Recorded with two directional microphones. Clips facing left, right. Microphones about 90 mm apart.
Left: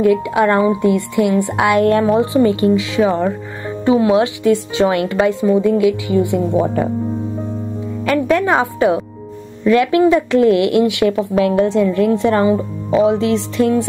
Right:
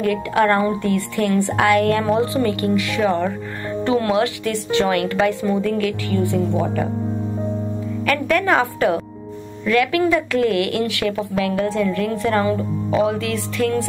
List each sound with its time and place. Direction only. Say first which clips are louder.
0.0 s speech: left 4 dB; 20° left (ahead or behind)
8.0 s speech: left 4 dB; 20° left (ahead or behind)